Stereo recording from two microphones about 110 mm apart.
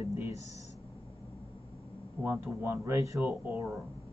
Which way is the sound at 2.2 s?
20° right (ahead or behind).